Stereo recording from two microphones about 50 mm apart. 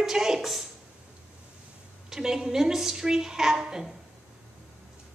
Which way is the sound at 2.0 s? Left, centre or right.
Centre.